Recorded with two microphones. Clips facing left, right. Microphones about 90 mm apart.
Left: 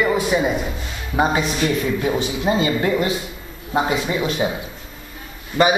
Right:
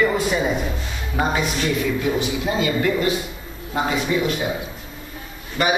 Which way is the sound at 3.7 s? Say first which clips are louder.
Left 1 dB; 20° left (ahead or behind).